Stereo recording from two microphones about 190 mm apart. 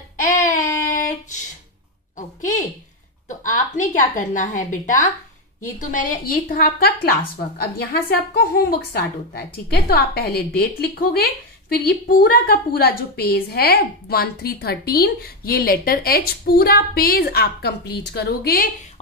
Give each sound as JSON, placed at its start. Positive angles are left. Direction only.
{"t": 0.2, "sound": "child singing", "side_deg": 40}
{"t": 2.1, "sound": "a sound", "side_deg": 40}
{"t": 3.3, "sound": "a woman's voice", "side_deg": 40}